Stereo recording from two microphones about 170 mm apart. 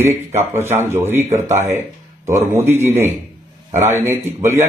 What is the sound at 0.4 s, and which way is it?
A man's voice, 15° right (ahead or behind).